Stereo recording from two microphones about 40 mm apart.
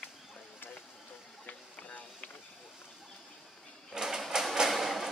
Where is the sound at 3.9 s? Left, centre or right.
Centre.